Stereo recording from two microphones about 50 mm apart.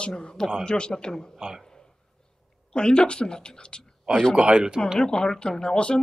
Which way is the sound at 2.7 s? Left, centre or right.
Centre.